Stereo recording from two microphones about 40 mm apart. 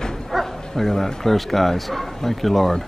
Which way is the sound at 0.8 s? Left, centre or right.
Centre.